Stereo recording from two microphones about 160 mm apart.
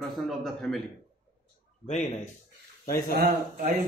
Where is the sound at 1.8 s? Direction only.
50° left (ahead or behind).